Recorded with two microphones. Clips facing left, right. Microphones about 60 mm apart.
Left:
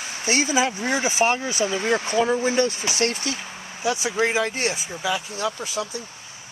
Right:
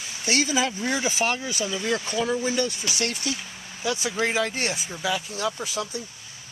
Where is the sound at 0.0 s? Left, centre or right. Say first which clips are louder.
Left 4 dB; left.